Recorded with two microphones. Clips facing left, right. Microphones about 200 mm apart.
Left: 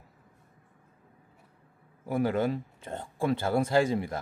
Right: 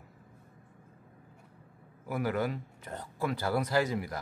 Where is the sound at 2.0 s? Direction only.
25° left (ahead or behind).